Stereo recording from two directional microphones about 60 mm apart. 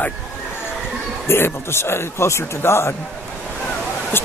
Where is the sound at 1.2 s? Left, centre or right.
Left.